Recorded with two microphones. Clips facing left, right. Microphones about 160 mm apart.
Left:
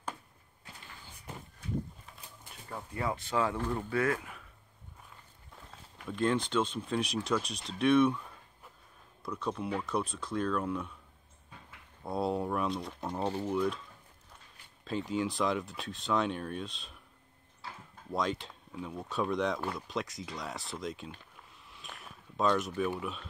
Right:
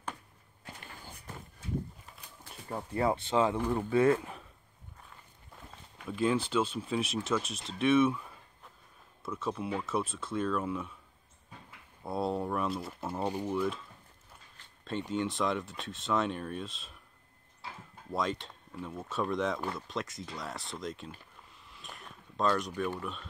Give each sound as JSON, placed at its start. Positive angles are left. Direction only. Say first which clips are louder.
{"t": 2.7, "sound": "speech", "louder": "right 5 dB", "side_deg": -30}
{"t": 5.7, "sound": "speech", "louder": "right 1 dB", "side_deg": 0}
{"t": 12.0, "sound": "speech", "louder": "even", "side_deg": 0}
{"t": 13.5, "sound": "speech", "louder": "left 2 dB", "side_deg": 0}
{"t": 14.9, "sound": "speech", "louder": "even", "side_deg": 0}
{"t": 18.1, "sound": "speech", "louder": "even", "side_deg": 0}
{"t": 21.6, "sound": "a sound", "louder": "even", "side_deg": 0}
{"t": 22.8, "sound": "speech", "louder": "left 2 dB", "side_deg": 5}